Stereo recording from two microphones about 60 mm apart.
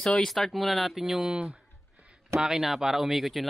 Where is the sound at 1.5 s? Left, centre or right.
Centre.